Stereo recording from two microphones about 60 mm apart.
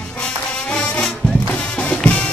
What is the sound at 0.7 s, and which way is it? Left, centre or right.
Music, centre.